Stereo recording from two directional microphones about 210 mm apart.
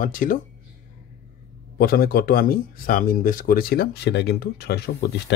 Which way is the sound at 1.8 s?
45° left (ahead or behind).